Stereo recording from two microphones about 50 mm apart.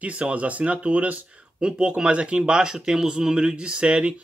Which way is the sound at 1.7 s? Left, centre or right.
Centre.